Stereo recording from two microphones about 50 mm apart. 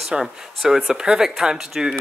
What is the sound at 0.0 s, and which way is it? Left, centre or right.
Speech, centre.